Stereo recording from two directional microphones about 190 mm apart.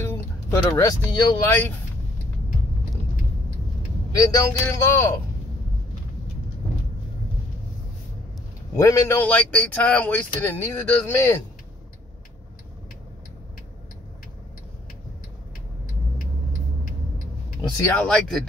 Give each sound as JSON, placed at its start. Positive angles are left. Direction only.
{"t": 0.0, "sound": "speech", "side_deg": 15}
{"t": 4.1, "sound": "speech", "side_deg": 15}
{"t": 8.7, "sound": "speech", "side_deg": 15}
{"t": 17.6, "sound": "speech", "side_deg": 10}